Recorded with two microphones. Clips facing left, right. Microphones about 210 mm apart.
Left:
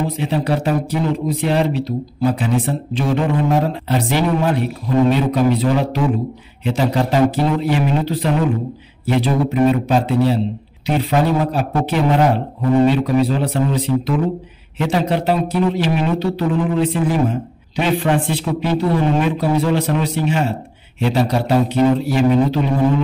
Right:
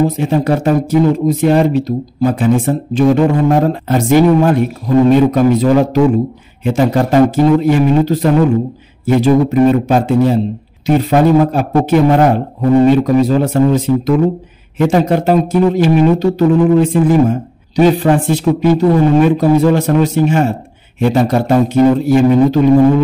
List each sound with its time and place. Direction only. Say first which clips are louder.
0.0 s speech: right 7 dB; 45° right (ahead or behind)